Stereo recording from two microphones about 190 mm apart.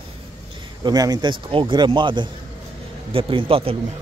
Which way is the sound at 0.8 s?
20° right (ahead or behind).